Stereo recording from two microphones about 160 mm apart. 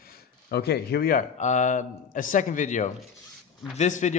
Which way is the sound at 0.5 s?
80° left.